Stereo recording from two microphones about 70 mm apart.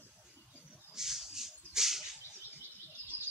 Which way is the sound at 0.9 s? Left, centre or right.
Centre.